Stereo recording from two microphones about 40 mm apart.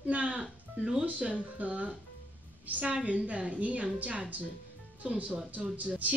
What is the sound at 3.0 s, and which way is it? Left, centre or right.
A woman's voice, right.